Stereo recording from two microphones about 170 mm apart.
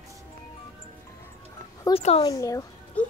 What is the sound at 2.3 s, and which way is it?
Speech, 20° left (ahead or behind).